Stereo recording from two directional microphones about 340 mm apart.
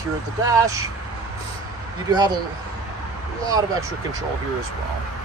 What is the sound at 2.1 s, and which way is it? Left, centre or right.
Speech, centre.